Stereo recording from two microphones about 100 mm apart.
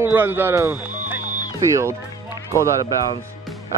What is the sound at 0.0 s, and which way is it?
Speech, 20° right (ahead or behind).